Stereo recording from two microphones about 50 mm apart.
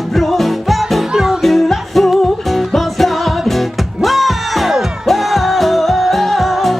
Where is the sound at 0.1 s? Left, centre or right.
Centre.